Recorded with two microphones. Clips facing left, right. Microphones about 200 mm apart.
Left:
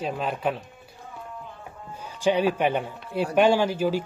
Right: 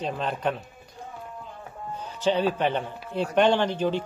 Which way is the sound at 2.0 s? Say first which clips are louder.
Left 2 dB; 10° left (ahead or behind).